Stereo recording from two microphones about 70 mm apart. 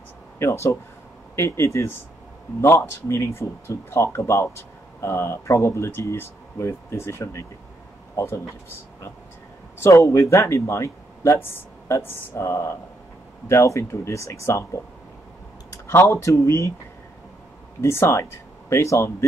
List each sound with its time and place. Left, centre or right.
0.4 s speech: left
9.8 s speech: left
15.9 s speech: left
17.7 s speech: left